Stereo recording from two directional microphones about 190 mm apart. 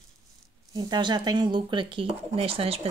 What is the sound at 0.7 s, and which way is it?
A woman's voice, 20° right (ahead or behind).